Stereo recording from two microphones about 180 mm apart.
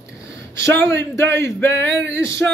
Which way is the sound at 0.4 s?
15° left (ahead or behind).